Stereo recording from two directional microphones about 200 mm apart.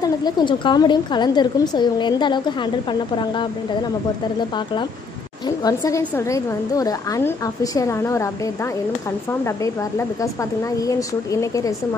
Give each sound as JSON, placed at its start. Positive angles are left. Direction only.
{"t": 0.0, "sound": "a woman's voice", "side_deg": 20}
{"t": 5.6, "sound": "a woman's voice", "side_deg": 15}